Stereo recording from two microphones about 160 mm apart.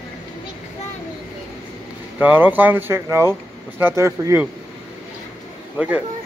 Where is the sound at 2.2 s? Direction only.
10° right (ahead or behind).